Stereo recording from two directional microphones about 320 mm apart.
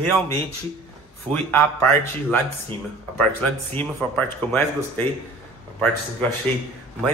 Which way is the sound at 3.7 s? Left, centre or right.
Centre.